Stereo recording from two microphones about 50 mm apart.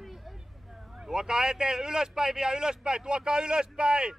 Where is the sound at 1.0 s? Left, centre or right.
Centre.